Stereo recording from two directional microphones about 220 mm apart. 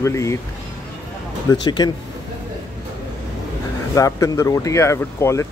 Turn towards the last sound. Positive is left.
turn(degrees=15)  # may be behind; listen again after turning